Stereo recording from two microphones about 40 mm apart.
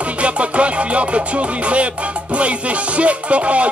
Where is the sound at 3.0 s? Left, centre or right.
Right.